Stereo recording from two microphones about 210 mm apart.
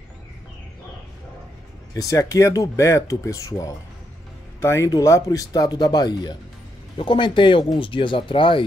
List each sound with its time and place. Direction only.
2.0 s speech: 15° left (ahead or behind)